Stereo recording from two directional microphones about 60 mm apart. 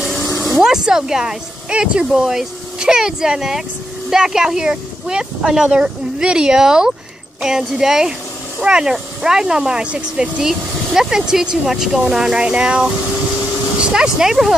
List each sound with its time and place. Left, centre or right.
0.3 s vehicle: left
0.6 s speech: centre